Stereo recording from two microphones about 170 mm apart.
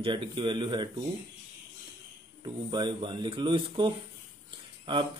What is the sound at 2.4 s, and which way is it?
A man's voice, 25° right (ahead or behind).